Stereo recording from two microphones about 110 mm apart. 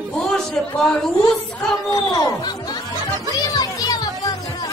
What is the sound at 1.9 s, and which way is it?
Speech, 40° left (ahead or behind).